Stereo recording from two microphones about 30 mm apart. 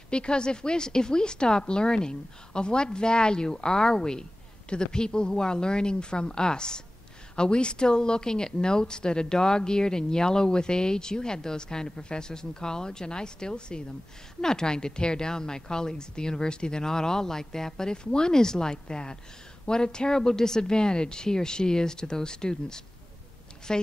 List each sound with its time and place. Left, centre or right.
0.1 s a woman's voice: left
16.8 s a woman's voice: centre